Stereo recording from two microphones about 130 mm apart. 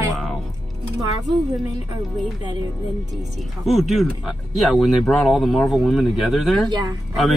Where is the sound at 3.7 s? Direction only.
Centre (ahead or behind).